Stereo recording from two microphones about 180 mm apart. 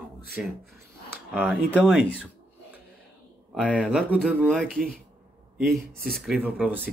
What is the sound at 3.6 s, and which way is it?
Speech, 5° left (ahead or behind).